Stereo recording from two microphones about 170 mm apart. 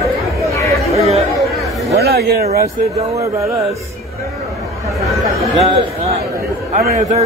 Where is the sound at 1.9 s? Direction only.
70° right (ahead or behind).